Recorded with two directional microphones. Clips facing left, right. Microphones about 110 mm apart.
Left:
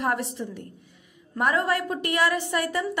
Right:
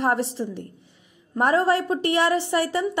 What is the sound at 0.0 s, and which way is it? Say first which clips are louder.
A woman's voice: right 4 dB; 30° right (ahead or behind).